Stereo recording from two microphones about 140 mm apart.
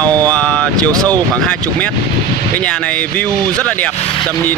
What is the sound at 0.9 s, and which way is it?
Speech, 25° right (ahead or behind).